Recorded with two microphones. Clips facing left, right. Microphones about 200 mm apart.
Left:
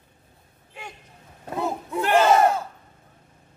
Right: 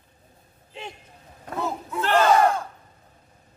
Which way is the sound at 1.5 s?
15° left (ahead or behind).